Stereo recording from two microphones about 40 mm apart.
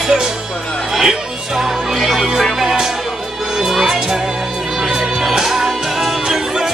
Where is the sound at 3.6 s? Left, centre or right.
Centre.